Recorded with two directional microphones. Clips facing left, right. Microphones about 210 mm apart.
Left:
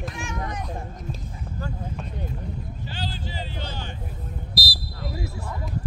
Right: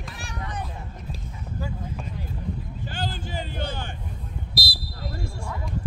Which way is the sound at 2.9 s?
50° right (ahead or behind).